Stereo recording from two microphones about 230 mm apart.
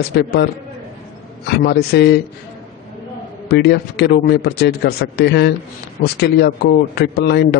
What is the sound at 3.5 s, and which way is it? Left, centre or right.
A man's voice, left.